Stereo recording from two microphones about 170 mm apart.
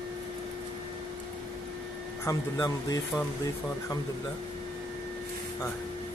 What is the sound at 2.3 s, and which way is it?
Speech, 20° left (ahead or behind).